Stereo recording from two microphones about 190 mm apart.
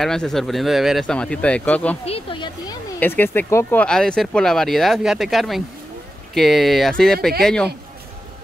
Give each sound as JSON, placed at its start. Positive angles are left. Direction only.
{"t": 0.0, "sound": "speech", "side_deg": 0}
{"t": 2.0, "sound": "speech", "side_deg": 30}
{"t": 3.0, "sound": "speech", "side_deg": 10}